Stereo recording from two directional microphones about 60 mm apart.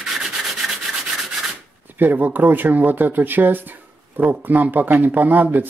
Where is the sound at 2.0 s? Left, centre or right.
Right.